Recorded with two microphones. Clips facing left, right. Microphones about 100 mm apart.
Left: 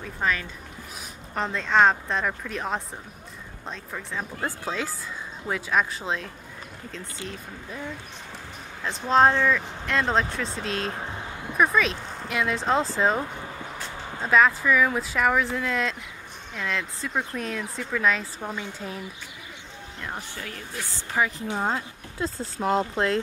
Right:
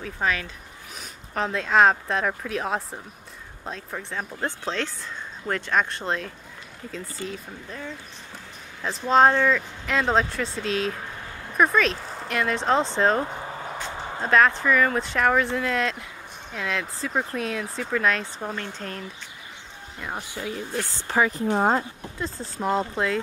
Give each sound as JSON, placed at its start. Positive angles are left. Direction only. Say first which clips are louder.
{"t": 0.0, "sound": "speech", "louder": "right 1 dB", "side_deg": 0}
{"t": 8.8, "sound": "speech", "louder": "right 1 dB", "side_deg": 0}
{"t": 14.2, "sound": "speech", "louder": "right 1 dB", "side_deg": 0}
{"t": 20.0, "sound": "speech", "louder": "right 3 dB", "side_deg": -10}
{"t": 21.2, "sound": "speech", "louder": "right 4 dB", "side_deg": -45}
{"t": 22.6, "sound": "speech", "louder": "left 1 dB", "side_deg": 0}